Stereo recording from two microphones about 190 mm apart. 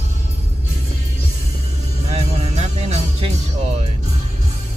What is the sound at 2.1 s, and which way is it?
Music, 35° right (ahead or behind).